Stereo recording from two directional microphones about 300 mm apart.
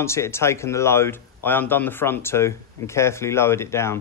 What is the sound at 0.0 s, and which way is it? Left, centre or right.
Speech, centre.